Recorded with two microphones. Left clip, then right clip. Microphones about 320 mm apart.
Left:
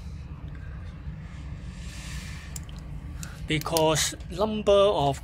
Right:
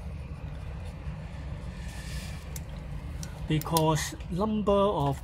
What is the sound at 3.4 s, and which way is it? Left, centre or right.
Speech, left.